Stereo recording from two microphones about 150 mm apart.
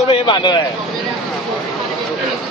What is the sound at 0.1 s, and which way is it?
Speech, 30° left (ahead or behind).